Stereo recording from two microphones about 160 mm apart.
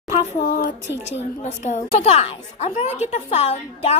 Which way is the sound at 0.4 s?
60° left (ahead or behind).